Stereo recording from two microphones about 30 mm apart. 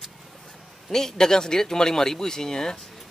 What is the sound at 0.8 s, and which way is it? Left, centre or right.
Speech, centre.